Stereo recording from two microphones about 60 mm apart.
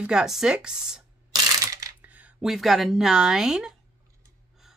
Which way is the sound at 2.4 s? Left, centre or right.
Centre.